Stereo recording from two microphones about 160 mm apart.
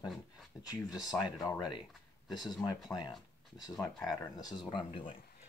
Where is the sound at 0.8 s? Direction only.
25° left (ahead or behind).